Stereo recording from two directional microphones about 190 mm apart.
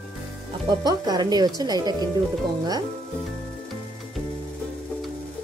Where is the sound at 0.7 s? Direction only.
20° right (ahead or behind).